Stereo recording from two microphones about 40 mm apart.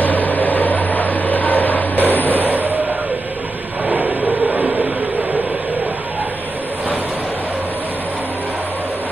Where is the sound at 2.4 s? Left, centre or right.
Right.